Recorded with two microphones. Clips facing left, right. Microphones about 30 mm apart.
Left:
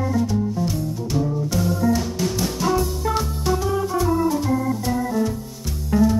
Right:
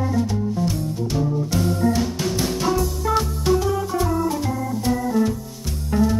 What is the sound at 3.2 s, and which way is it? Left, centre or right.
Organ, centre.